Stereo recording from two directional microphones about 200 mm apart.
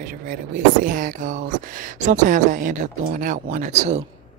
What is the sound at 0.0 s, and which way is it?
Speech, 45° right (ahead or behind).